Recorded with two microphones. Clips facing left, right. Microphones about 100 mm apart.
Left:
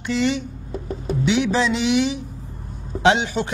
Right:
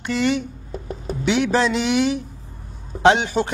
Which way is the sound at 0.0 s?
50° right (ahead or behind).